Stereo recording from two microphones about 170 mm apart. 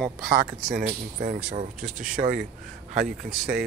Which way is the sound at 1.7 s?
5° right (ahead or behind).